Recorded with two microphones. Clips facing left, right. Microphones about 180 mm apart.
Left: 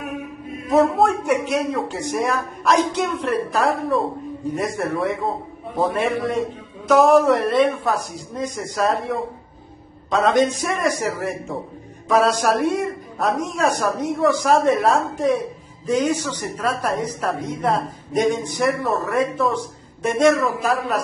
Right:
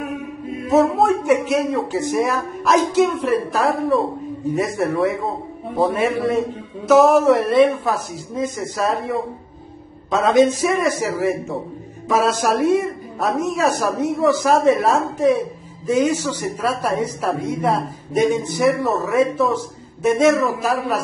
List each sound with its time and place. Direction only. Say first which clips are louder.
0.7 s a woman's voice: right 1 dB; centre (ahead or behind)
10.2 s a woman's voice: right 4 dB; centre (ahead or behind)